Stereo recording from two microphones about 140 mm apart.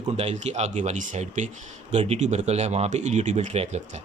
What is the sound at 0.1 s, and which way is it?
Speech, 50° right (ahead or behind).